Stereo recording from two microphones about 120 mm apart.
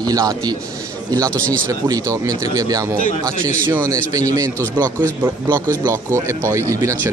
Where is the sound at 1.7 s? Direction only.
30° right (ahead or behind).